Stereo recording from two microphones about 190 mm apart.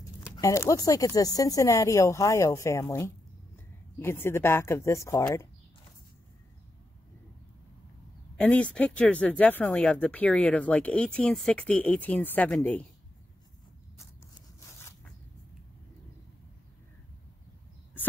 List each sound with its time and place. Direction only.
0.4 s speech: 15° left (ahead or behind)
8.4 s speech: 5° left (ahead or behind)